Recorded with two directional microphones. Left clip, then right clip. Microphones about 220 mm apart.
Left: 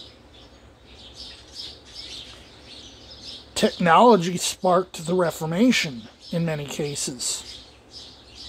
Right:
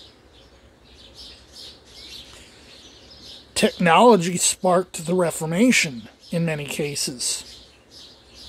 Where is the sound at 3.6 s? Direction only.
15° right (ahead or behind).